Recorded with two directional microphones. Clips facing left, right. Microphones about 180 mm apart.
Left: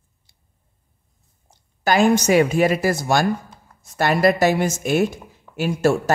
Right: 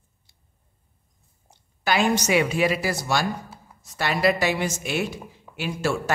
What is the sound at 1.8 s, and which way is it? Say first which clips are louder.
Speech: left 6 dB; 45° left (ahead or behind).